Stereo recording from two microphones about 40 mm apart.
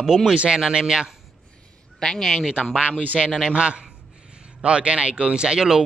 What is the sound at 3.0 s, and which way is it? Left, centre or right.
Speech, right.